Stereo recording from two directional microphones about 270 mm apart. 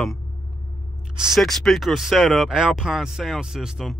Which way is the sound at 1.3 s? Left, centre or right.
Centre.